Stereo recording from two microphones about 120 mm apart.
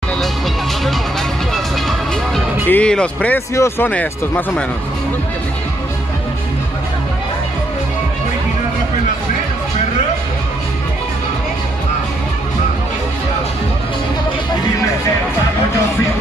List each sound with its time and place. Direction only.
1.5 s music: centre (ahead or behind)
2.7 s speech: 10° left (ahead or behind)